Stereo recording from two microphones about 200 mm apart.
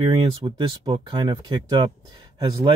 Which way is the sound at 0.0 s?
25° right (ahead or behind).